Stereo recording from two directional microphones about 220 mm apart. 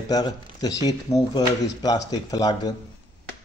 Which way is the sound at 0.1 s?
15° left (ahead or behind).